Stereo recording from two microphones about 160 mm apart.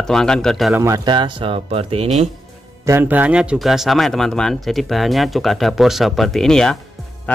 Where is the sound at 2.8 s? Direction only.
15° right (ahead or behind).